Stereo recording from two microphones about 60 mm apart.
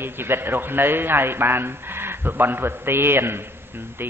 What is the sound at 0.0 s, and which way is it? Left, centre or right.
A man's voice, right.